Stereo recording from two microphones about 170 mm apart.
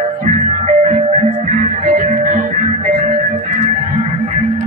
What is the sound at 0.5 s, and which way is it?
Music, 40° right (ahead or behind).